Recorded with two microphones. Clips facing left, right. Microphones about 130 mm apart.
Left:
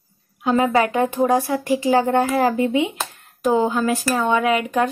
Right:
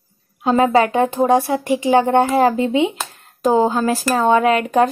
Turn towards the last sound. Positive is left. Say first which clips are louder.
# right 4 dB
turn(degrees=-35)  # may be behind; listen again after turning